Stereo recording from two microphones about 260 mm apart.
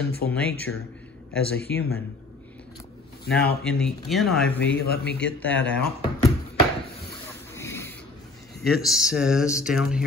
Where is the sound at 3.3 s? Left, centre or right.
Left.